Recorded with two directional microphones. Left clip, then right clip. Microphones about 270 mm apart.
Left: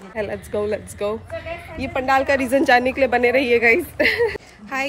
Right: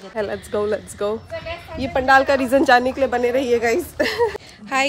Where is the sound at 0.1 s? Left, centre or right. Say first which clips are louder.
Right 1 dB; centre.